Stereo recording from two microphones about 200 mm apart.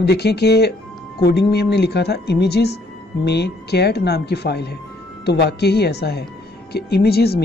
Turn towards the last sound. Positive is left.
turn(degrees=50)  # may be behind; listen again after turning